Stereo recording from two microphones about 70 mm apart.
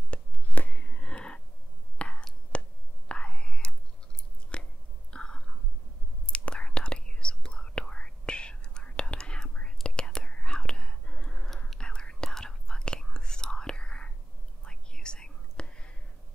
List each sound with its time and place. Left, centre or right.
0.1 s a sound: left
2.0 s whispering: centre
2.5 s a sound: centre
3.1 s whispering: centre
4.5 s chewing: centre
5.1 s whispering: centre